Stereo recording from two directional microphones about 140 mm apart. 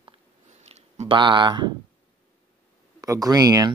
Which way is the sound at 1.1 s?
35° right (ahead or behind).